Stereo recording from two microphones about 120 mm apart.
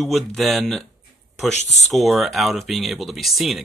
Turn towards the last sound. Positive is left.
turn(degrees=0)  # may be behind; listen again after turning